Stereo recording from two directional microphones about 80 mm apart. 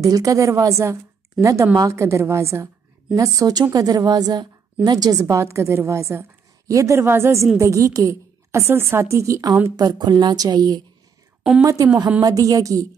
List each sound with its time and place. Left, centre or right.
0.0 s a woman's voice: right
3.2 s a woman's voice: right
9.8 s a woman's voice: right
11.6 s a woman's voice: right